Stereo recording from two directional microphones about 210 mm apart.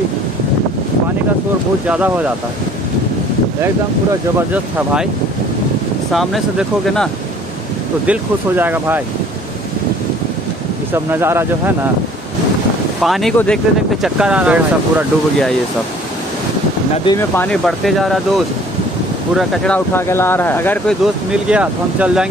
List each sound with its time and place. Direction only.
1.9 s speech: 5° right (ahead or behind)
8.1 s speech: 10° right (ahead or behind)
10.9 s speech: 10° right (ahead or behind)
13.0 s speech: centre (ahead or behind)
16.9 s speech: 25° left (ahead or behind)
17.4 s speech: 5° left (ahead or behind)